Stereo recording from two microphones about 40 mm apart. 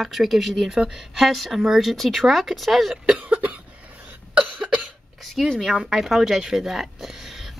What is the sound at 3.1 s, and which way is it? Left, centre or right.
Cough, right.